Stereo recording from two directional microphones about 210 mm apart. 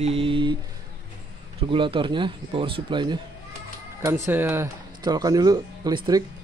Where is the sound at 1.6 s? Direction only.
25° right (ahead or behind).